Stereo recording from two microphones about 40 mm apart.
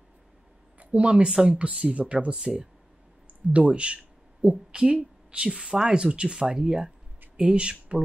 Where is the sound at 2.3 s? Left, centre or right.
Centre.